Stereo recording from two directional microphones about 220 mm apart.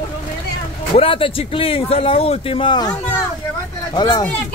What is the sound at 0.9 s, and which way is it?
Speech, 25° left (ahead or behind).